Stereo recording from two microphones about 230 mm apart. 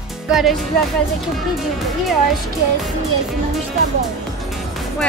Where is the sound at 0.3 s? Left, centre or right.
Centre.